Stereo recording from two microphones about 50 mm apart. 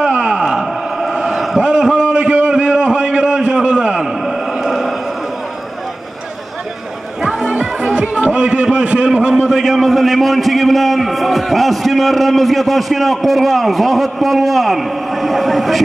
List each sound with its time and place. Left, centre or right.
0.2 s wail: centre
1.6 s a sound: centre
4.6 s a sound: centre
7.2 s music: centre
7.5 s music: right
8.6 s a man's voice: centre
9.3 s a man's voice: centre